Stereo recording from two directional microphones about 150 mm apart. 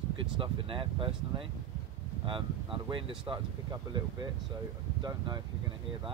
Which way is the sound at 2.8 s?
35° right (ahead or behind).